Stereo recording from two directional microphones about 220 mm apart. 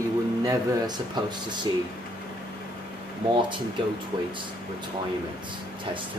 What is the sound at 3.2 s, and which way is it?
Speech, 20° right (ahead or behind).